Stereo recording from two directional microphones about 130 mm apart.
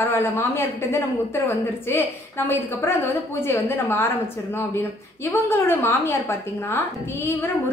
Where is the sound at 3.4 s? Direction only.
20° left (ahead or behind).